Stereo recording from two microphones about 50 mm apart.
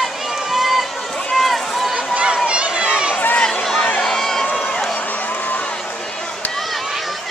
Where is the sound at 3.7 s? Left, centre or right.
Left.